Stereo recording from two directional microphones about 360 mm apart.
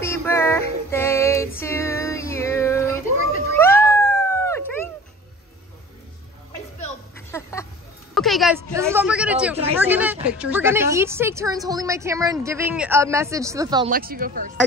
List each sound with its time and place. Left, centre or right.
0.0 s female singing: centre
3.5 s a sound: centre
4.5 s dog: centre
7.2 s a sound: centre
9.8 s a woman's voice: centre
13.8 s speech: right